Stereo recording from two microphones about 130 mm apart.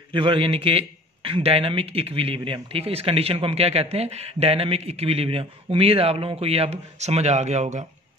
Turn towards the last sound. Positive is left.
turn(degrees=-60)  # may be behind; listen again after turning